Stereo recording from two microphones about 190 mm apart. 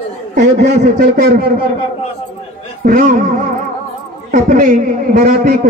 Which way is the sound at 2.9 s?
45° right (ahead or behind).